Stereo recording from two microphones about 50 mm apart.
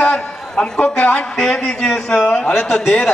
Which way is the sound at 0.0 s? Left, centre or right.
Left.